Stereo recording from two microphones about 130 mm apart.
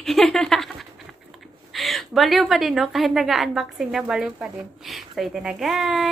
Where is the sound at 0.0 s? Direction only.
Centre (ahead or behind).